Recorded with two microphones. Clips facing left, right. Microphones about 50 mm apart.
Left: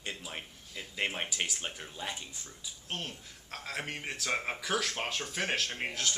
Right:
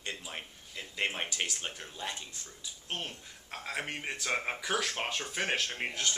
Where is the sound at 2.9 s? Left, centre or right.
Centre.